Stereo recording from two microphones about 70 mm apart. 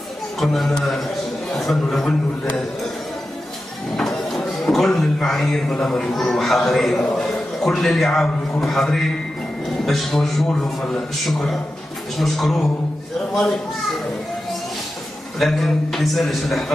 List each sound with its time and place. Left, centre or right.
0.4 s a man's voice: centre
3.9 s a sound: centre
4.4 s a man's voice: centre
15.3 s a man's voice: centre